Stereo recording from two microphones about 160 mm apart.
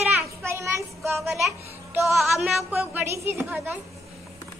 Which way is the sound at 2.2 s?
Centre (ahead or behind).